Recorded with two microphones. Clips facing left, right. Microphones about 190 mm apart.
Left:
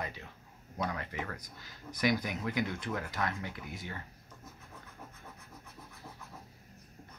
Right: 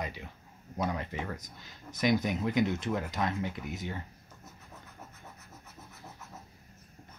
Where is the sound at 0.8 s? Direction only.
20° right (ahead or behind).